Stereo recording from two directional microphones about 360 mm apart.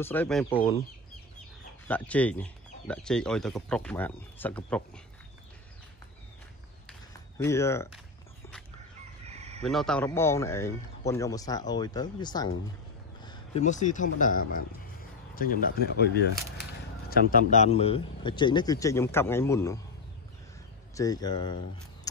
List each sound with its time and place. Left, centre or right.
0.0 s speech: centre
1.9 s speech: centre
6.9 s walk: centre
9.2 s chicken: centre
9.6 s speech: centre
20.9 s speech: centre